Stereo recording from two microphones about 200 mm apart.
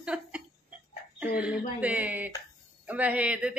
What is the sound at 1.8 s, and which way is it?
Speech, 5° right (ahead or behind).